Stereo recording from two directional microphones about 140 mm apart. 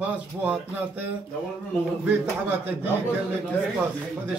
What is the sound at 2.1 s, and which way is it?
Speech, 15° right (ahead or behind).